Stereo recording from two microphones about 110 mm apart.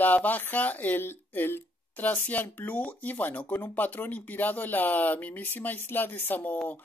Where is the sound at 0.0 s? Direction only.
15° left (ahead or behind).